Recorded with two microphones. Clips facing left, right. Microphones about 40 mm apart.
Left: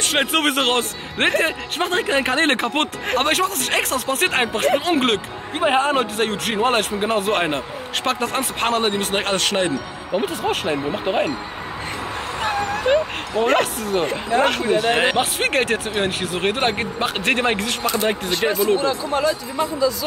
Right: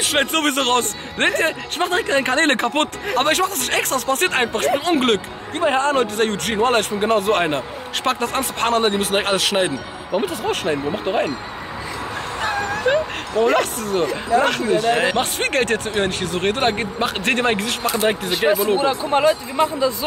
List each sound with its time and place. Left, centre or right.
0.0 s a man's voice: centre
5.6 s a man's voice: left
5.9 s a man's voice: centre
12.4 s dog: centre
13.6 s a man's voice: centre
19.1 s speech: right